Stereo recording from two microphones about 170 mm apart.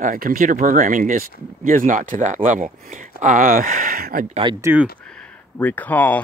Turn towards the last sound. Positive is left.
turn(degrees=10)  # may be behind; listen again after turning